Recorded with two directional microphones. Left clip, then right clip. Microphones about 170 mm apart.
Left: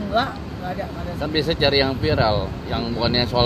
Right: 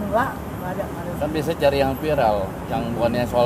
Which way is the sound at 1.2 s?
40° left (ahead or behind).